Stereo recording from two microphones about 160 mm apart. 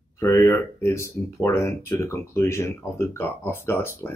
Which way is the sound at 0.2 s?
15° left (ahead or behind).